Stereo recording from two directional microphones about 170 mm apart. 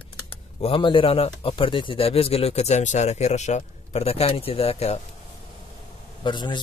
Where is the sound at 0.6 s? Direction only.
30° left (ahead or behind).